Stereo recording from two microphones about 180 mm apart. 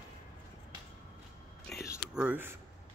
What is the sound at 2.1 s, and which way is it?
Speech, 10° right (ahead or behind).